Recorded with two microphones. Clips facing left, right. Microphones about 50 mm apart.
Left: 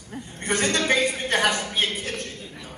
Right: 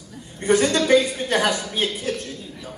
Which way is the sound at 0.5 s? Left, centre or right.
Left.